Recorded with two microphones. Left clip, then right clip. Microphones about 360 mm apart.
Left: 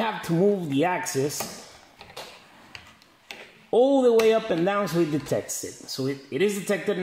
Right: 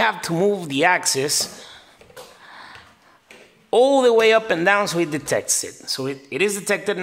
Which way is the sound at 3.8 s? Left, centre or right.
Right.